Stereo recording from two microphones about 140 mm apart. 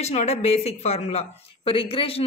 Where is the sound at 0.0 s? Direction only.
55° left (ahead or behind).